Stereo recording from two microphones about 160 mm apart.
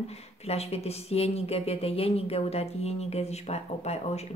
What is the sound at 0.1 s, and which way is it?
Speech, 40° left (ahead or behind).